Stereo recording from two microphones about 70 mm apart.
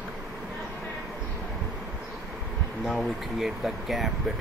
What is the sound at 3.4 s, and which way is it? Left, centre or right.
Speech, centre.